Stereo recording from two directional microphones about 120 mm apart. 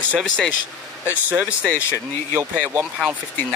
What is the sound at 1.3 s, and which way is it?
Speech, 10° right (ahead or behind).